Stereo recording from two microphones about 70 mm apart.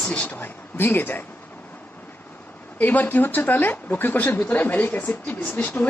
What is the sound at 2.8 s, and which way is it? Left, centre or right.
Speech, left.